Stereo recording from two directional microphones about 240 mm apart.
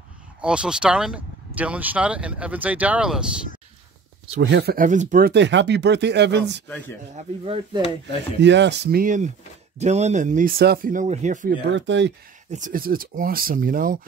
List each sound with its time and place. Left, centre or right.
0.4 s speech: centre
4.4 s speech: right
8.4 s speech: right
11.6 s speech: right
12.4 s speech: right